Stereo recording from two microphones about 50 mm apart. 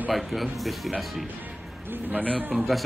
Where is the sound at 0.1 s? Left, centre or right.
Centre.